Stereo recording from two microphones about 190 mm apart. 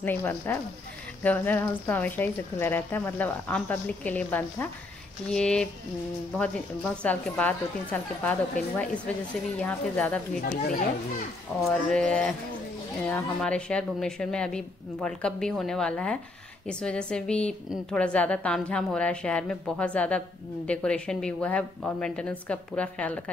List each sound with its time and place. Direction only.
0.0 s a woman's voice: 10° left (ahead or behind)
10.4 s a child's voice: 45° left (ahead or behind)
11.9 s a woman's voice: 5° left (ahead or behind)